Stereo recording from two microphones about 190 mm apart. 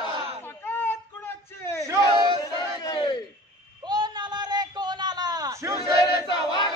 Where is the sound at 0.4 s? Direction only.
10° left (ahead or behind).